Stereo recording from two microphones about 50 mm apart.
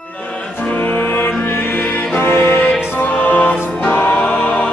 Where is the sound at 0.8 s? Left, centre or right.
Left.